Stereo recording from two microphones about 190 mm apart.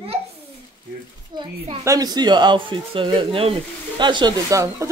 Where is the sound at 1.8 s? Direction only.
20° right (ahead or behind).